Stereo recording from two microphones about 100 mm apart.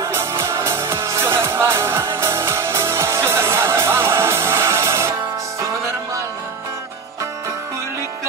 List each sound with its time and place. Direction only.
0.0 s music: 30° right (ahead or behind)